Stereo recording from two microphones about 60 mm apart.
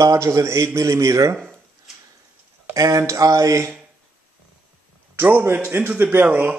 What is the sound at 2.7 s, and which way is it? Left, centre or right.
Speech, right.